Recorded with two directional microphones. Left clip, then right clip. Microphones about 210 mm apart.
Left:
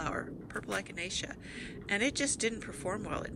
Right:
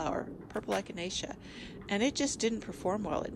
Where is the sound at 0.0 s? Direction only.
10° right (ahead or behind).